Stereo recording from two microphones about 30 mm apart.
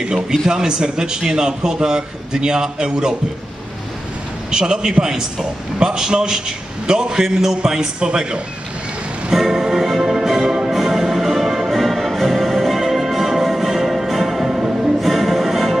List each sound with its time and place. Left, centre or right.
0.3 s a man's voice: right
4.5 s a man's voice: right
9.3 s music: centre
14.4 s music: right
15.0 s music: centre